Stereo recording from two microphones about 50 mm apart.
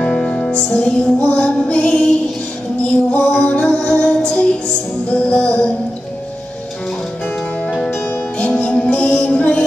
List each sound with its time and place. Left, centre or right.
0.0 s music: centre
7.9 s music: left